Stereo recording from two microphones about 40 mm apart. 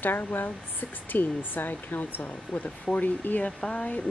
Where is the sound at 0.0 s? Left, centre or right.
Left.